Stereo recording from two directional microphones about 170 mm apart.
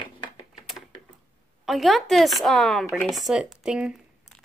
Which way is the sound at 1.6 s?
Centre (ahead or behind).